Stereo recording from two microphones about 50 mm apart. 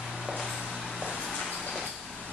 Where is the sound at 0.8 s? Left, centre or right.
Centre.